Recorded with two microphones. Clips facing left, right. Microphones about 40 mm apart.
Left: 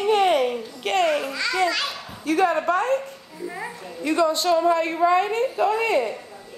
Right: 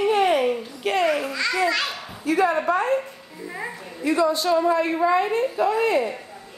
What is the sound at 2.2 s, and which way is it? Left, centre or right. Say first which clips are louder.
Speech: even; left.